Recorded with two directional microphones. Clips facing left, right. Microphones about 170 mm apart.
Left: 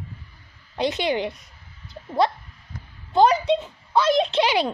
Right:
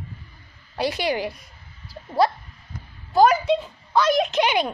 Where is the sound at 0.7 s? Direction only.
20° left (ahead or behind).